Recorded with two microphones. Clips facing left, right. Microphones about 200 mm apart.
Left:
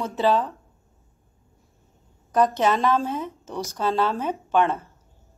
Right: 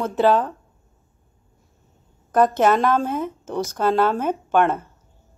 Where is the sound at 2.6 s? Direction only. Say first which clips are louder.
Right 4 dB; 50° right (ahead or behind).